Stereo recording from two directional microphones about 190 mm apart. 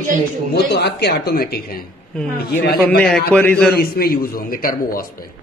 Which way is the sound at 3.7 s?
55° left (ahead or behind).